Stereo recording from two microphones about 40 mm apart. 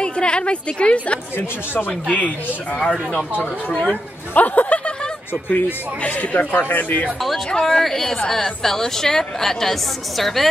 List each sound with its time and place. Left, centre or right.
0.0 s a woman's voice: left
3.7 s speech: left
4.3 s speech: left
5.3 s speech: left
6.0 s speech: left
6.7 s speech: left
7.5 s a woman's voice: centre